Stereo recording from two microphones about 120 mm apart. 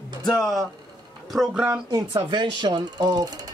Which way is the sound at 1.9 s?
35° right (ahead or behind).